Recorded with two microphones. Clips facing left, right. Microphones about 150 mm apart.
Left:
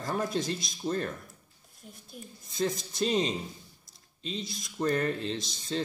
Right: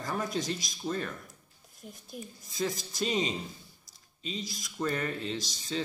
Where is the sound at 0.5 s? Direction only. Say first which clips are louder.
Left 1 dB; centre (ahead or behind).